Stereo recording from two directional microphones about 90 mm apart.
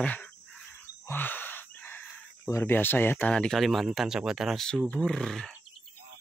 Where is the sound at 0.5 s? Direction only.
Centre (ahead or behind).